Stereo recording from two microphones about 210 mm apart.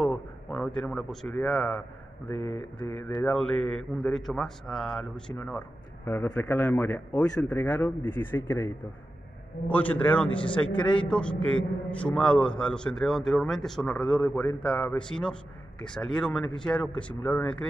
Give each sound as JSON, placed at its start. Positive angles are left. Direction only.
{"t": 0.0, "sound": "a man's voice", "side_deg": 5}
{"t": 2.3, "sound": "speech", "side_deg": -25}
{"t": 3.0, "sound": "a man's voice", "side_deg": 5}